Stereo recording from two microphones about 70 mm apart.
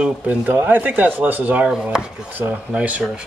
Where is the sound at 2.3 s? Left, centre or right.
Right.